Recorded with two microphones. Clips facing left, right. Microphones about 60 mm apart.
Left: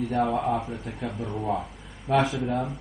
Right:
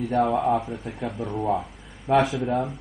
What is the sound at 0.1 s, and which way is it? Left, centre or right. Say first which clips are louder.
Speech: right 5 dB; centre.